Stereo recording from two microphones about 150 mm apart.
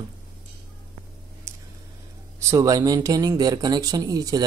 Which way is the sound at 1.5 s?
20° right (ahead or behind).